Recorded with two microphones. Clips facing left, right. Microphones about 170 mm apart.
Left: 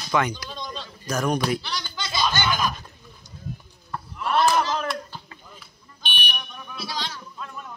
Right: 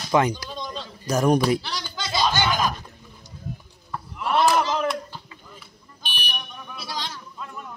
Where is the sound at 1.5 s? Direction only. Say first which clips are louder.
Right 3 dB; 35° right (ahead or behind).